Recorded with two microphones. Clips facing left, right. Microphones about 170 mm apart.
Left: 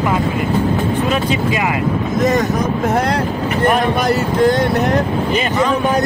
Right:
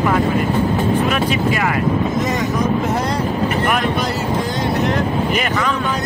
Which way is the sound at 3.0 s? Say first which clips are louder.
Left 3 dB; 65° left (ahead or behind).